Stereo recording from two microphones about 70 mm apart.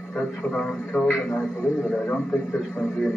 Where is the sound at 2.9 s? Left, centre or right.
Left.